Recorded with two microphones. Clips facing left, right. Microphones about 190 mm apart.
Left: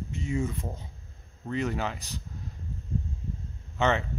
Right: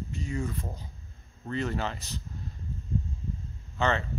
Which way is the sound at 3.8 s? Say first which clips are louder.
Left 2 dB; 15° left (ahead or behind).